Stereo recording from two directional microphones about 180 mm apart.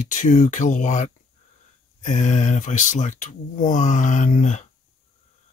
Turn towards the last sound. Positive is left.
turn(degrees=40)  # may be behind; listen again after turning